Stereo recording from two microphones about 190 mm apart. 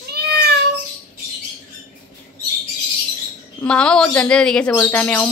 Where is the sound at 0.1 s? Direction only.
55° right (ahead or behind).